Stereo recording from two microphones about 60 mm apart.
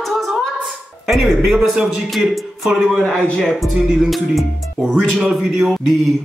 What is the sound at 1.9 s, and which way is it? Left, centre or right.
Speech, centre.